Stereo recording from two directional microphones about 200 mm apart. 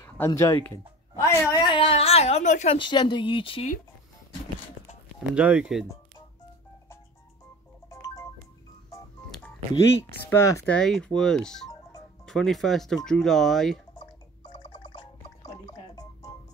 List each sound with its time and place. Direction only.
0.0 s speech: 15° left (ahead or behind)
5.3 s speech: 5° right (ahead or behind)
7.9 s ringtone: 15° left (ahead or behind)
10.3 s speech: 15° left (ahead or behind)
10.6 s speech: 5° left (ahead or behind)
15.0 s music: 20° left (ahead or behind)